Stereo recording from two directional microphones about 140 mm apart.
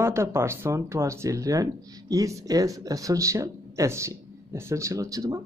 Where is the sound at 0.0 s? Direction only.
20° right (ahead or behind).